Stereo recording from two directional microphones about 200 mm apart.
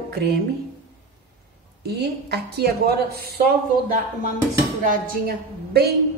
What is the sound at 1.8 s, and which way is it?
Speech, 55° right (ahead or behind).